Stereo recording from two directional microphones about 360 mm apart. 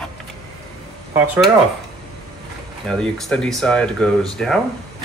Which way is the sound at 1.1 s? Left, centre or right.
Centre.